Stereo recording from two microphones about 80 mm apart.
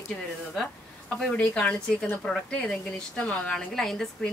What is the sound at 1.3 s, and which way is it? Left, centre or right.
A woman's voice, centre.